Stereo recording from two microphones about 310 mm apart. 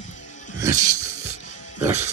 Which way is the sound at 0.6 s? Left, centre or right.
Centre.